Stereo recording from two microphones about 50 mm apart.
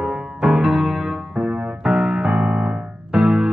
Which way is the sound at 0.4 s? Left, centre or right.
Centre.